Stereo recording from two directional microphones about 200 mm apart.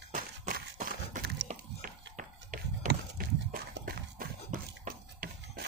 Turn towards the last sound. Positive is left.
turn(degrees=-45)  # may be behind; listen again after turning